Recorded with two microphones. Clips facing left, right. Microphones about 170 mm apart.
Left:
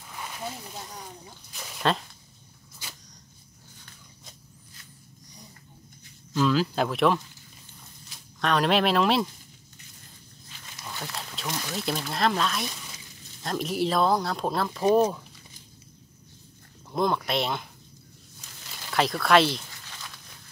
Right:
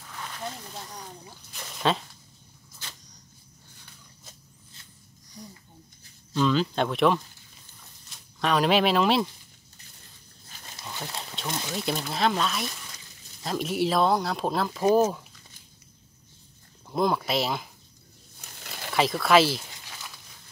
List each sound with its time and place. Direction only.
0.0 s speech: 10° left (ahead or behind)
2.8 s a sound: 10° left (ahead or behind)
6.3 s speech: 5° left (ahead or behind)
8.4 s speech: centre (ahead or behind)
10.5 s a sound: 40° right (ahead or behind)
11.4 s speech: centre (ahead or behind)
16.9 s speech: centre (ahead or behind)
18.9 s speech: centre (ahead or behind)
19.8 s a sound: 10° right (ahead or behind)